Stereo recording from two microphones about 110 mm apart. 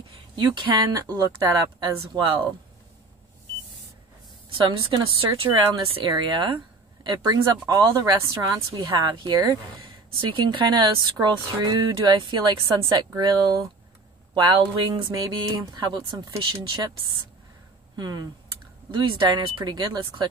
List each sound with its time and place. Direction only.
0.4 s speech: 35° right (ahead or behind)
4.6 s a woman's voice: 55° right (ahead or behind)
14.9 s speech: 35° right (ahead or behind)
17.9 s speech: 40° right (ahead or behind)